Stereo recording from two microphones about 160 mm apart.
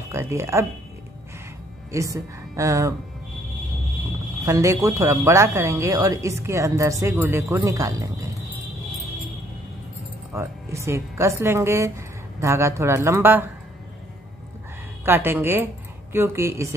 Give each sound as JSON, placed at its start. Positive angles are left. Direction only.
{"t": 0.1, "sound": "a woman's voice", "side_deg": -15}
{"t": 1.9, "sound": "speech", "side_deg": -20}
{"t": 4.5, "sound": "speech", "side_deg": -20}
{"t": 10.3, "sound": "a woman's voice", "side_deg": -15}
{"t": 15.0, "sound": "speech", "side_deg": -15}